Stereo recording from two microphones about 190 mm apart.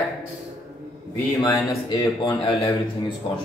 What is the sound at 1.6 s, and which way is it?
Speech, 20° left (ahead or behind).